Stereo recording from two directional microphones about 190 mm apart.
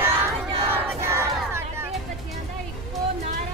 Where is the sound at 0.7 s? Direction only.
15° right (ahead or behind).